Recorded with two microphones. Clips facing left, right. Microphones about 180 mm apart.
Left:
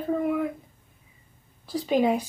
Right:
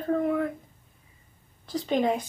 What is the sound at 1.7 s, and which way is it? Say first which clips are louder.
Speech: left 2 dB; 5° left (ahead or behind).